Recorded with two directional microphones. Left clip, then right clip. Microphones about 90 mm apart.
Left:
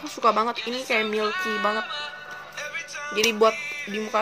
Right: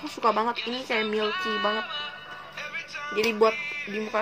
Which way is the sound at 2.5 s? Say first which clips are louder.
Left 2 dB; 35° left (ahead or behind).